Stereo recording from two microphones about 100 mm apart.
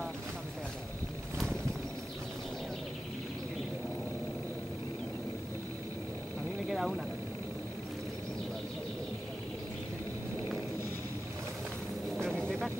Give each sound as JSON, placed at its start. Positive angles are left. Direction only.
{"t": 6.7, "sound": "vehicle", "side_deg": 0}
{"t": 12.2, "sound": "vehicle", "side_deg": 5}